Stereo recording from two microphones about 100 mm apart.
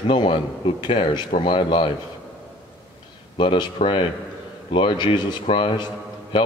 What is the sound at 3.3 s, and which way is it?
A man's voice, 55° left (ahead or behind).